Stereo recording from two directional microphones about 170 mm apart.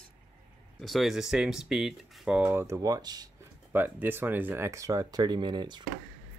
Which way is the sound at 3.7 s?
10° right (ahead or behind).